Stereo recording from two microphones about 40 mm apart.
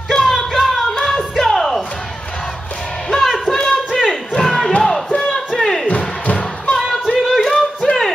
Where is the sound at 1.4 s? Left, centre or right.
Centre.